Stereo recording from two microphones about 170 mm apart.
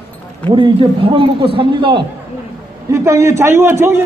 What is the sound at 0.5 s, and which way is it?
A man's voice, 30° right (ahead or behind).